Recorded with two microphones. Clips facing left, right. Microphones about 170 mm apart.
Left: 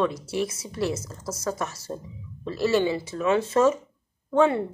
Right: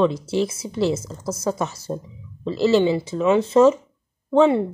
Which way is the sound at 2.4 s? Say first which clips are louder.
Right 5 dB; 20° right (ahead or behind).